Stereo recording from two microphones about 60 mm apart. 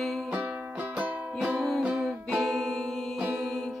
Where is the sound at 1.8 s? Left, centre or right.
Centre.